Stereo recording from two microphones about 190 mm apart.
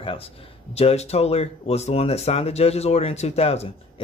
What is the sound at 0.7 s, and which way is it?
Speech, 35° left (ahead or behind).